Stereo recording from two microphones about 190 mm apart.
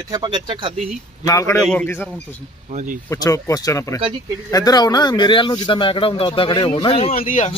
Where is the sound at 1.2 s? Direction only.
15° left (ahead or behind).